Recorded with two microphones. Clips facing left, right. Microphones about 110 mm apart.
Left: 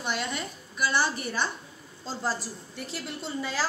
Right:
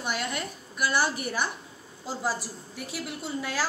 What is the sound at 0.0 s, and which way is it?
A woman's voice, 5° right (ahead or behind).